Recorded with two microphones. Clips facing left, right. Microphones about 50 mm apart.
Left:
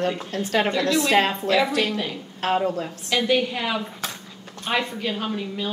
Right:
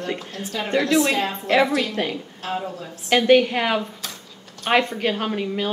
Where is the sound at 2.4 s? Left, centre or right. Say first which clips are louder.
Left 8 dB; left.